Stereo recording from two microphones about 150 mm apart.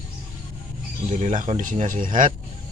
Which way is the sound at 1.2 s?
50° right (ahead or behind).